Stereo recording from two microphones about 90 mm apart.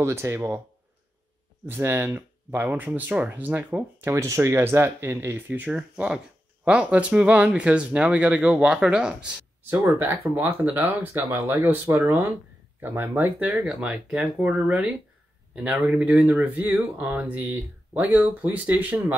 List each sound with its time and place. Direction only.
0.0 s speech: 30° right (ahead or behind)
1.7 s speech: 25° right (ahead or behind)
4.1 s speech: 35° right (ahead or behind)
5.5 s speech: 15° right (ahead or behind)
9.6 s speech: 25° right (ahead or behind)
13.7 s speech: 5° right (ahead or behind)